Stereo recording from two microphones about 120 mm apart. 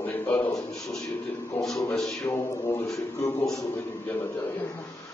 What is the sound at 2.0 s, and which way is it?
Music, centre (ahead or behind).